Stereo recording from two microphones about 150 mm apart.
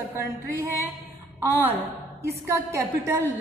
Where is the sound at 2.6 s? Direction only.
15° right (ahead or behind).